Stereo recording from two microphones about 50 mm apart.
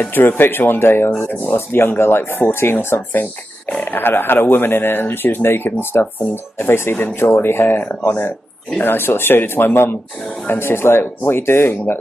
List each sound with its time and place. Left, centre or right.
0.0 s speech: left
3.7 s speech: left
10.6 s speech: left